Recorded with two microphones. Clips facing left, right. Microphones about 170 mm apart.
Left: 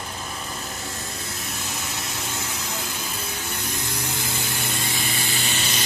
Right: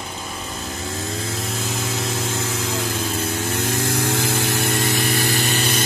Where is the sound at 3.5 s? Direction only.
80° right; by 5.8 s 60° right (ahead or behind).